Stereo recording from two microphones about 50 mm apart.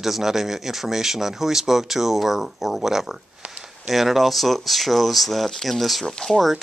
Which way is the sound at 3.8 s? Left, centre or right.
Centre.